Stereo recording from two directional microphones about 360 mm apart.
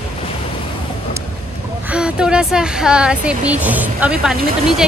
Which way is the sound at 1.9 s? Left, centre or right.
Centre.